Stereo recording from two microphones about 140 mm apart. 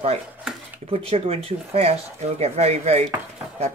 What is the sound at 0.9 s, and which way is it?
Speech, 45° right (ahead or behind).